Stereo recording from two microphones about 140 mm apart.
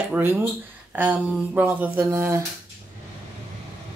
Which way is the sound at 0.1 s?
15° right (ahead or behind).